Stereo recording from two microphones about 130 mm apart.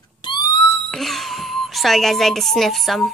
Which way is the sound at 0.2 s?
35° left (ahead or behind).